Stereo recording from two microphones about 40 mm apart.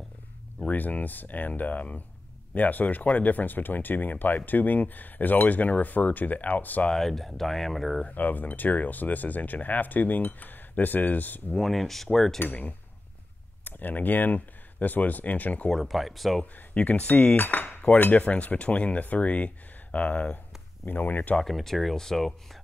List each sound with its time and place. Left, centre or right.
0.7 s speech: left
7.0 s speech: centre
8.1 s speech: left
11.6 s speech: centre
12.4 s speech: left
15.7 s speech: centre
16.7 s cutlery: left
18.2 s speech: left
20.8 s speech: left
21.4 s speech: centre